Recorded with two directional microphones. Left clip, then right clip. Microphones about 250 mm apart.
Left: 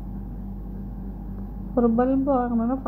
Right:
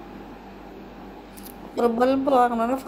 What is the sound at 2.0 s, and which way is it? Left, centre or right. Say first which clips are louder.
Speech: right 4 dB; right.